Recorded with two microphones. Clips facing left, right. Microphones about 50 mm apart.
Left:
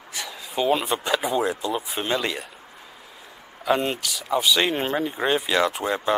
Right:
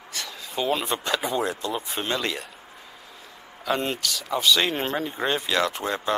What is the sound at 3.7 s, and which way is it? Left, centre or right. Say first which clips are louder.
Speech: left 3 dB; centre.